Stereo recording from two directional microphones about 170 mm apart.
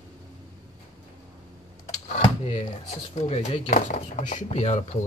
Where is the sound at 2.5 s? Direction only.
40° left (ahead or behind).